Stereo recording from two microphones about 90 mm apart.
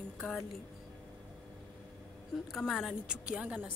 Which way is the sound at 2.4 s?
Centre (ahead or behind).